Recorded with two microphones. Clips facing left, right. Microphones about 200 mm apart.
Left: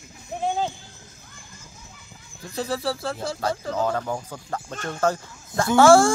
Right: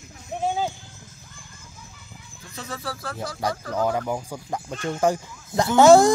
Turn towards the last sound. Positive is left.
turn(degrees=-20)  # may be behind; listen again after turning